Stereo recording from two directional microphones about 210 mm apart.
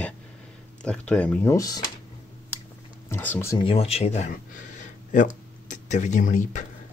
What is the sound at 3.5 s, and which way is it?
Speech, 25° left (ahead or behind).